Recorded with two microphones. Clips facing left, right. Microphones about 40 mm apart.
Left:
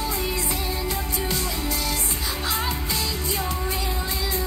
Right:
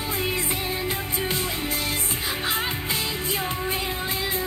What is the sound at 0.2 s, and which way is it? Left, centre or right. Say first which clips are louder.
Music: right 1 dB; right.